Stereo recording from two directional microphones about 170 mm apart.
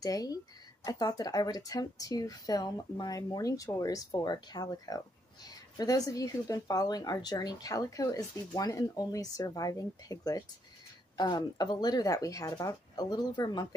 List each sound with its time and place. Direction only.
0.0 s a woman's voice: 20° left (ahead or behind)